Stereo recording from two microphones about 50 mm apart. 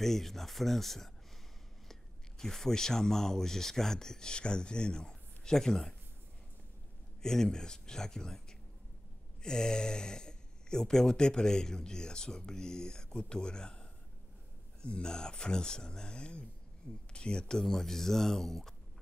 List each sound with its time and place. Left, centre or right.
0.0 s speech: centre
7.2 s speech: centre